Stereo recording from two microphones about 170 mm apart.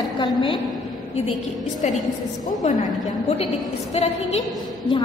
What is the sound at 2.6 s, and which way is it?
Speech, 40° left (ahead or behind).